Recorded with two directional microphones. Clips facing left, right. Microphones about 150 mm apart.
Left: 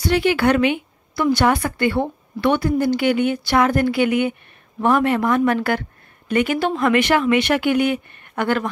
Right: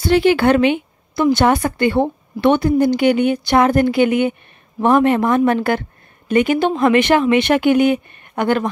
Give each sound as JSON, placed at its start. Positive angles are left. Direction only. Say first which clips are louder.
{"t": 0.0, "sound": "speech", "louder": "right 4 dB", "side_deg": -30}